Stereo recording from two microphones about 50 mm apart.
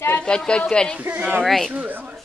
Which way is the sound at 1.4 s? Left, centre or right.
Centre.